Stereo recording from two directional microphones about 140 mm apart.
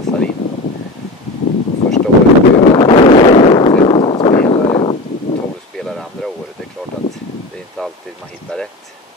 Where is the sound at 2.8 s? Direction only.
40° left (ahead or behind).